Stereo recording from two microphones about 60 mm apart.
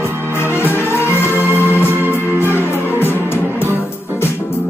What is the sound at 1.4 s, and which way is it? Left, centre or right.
Music, left.